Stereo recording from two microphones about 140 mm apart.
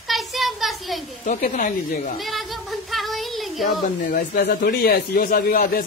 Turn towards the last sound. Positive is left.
turn(degrees=90)